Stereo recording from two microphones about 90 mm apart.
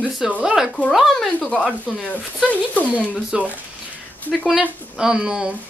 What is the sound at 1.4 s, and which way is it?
Speech, 15° left (ahead or behind).